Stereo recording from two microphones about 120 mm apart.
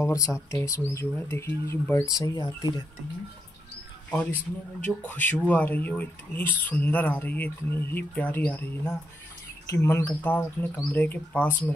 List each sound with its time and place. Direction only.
0.0 s speech: 25° left (ahead or behind)
4.8 s speech: 15° left (ahead or behind)